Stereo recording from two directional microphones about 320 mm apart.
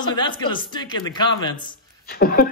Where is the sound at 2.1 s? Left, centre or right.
Left.